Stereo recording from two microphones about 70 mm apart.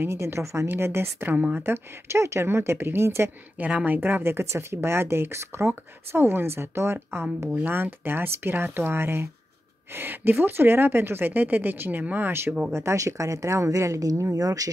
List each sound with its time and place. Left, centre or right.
0.0 s a woman's voice: right
1.2 s speech: right
3.5 s speech: right
12.7 s a woman's voice: right